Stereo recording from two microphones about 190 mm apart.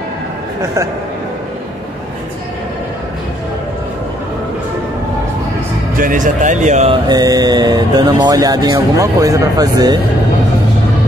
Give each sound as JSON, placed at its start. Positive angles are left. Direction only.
{"t": 5.9, "sound": "a man's voice", "side_deg": -45}
{"t": 7.1, "sound": "speech", "side_deg": -20}